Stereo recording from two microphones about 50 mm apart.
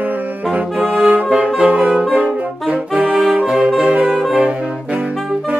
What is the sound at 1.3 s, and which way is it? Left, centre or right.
Saxophone, centre.